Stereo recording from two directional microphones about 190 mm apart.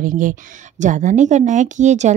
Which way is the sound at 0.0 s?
45° right (ahead or behind).